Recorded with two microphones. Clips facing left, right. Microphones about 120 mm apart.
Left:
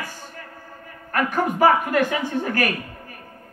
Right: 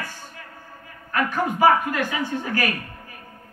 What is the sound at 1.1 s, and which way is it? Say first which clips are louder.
A woman's voice: left 1 dB; 55° left (ahead or behind).